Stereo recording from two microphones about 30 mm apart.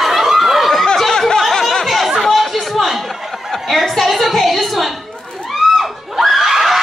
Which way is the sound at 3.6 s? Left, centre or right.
Centre.